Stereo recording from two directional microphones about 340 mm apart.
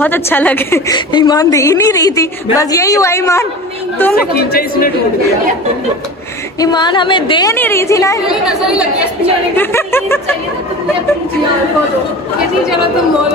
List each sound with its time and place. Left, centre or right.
0.0 s a woman's voice: centre
4.4 s speech: left
6.6 s a woman's voice: centre
8.5 s a woman's voice: centre